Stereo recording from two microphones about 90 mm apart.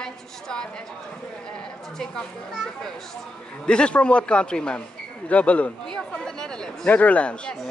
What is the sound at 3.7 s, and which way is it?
A woman's voice, 10° left (ahead or behind).